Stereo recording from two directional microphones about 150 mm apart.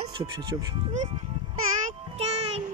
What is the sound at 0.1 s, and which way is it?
Speech, 30° right (ahead or behind).